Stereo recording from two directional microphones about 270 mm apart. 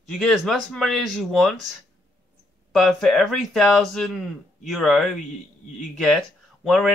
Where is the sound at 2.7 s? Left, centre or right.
Centre.